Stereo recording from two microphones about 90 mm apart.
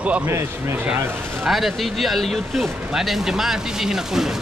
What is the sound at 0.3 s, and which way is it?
Speech, 30° right (ahead or behind).